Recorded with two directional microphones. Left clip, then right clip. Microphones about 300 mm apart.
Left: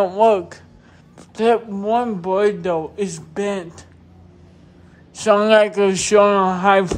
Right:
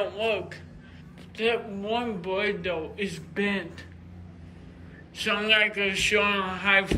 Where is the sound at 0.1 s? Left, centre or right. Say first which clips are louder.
Left 13 dB; centre.